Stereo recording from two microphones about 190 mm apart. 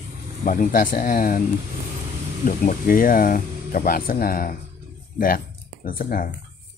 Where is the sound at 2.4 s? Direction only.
45° left (ahead or behind).